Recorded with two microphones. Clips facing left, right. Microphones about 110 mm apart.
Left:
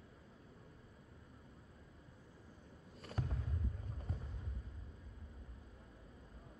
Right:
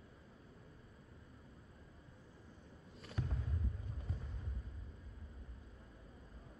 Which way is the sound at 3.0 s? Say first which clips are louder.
Left 1 dB; 40° left (ahead or behind).